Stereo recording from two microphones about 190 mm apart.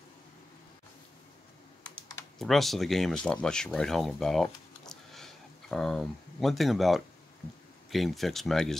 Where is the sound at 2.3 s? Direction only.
Centre (ahead or behind).